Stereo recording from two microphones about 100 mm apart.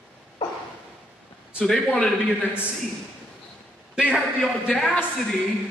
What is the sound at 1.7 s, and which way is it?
Speech, 5° left (ahead or behind).